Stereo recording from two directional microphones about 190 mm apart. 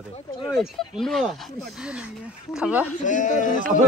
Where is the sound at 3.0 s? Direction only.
40° left (ahead or behind).